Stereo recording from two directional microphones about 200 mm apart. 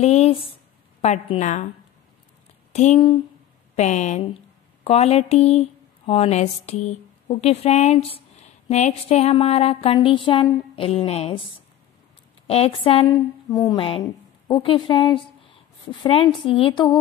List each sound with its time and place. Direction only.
0.0 s a woman's voice: 30° left (ahead or behind)
2.7 s a woman's voice: 35° left (ahead or behind)
12.4 s a woman's voice: 30° left (ahead or behind)